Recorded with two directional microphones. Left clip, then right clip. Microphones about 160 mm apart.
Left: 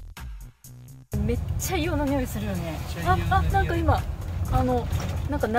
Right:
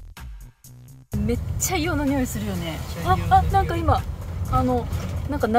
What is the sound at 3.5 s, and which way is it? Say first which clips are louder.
A woman's voice: right 3 dB; 25° right (ahead or behind).